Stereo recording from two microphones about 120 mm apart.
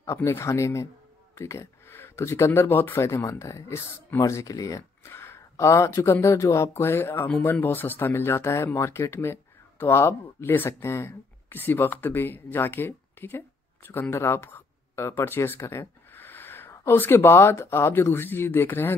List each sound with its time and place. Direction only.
0.0 s speech: 20° left (ahead or behind)